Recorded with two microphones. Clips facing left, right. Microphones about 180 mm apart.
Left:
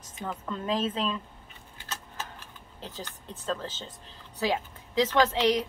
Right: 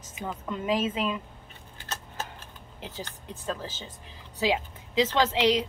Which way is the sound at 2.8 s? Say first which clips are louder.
Right 1 dB; 20° right (ahead or behind).